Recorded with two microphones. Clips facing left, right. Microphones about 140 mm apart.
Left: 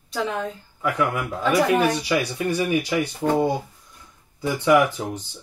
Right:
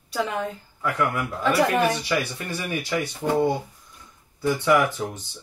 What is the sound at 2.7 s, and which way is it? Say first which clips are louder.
Speech: left 4 dB; 15° left (ahead or behind).